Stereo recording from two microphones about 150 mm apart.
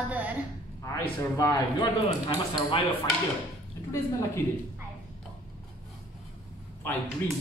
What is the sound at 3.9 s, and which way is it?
Speech, 20° left (ahead or behind).